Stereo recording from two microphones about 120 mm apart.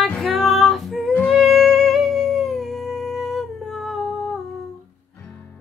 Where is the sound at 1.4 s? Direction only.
Centre (ahead or behind).